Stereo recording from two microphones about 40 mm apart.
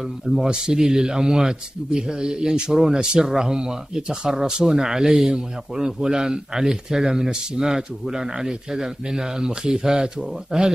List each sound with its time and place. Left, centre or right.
0.5 s speech: centre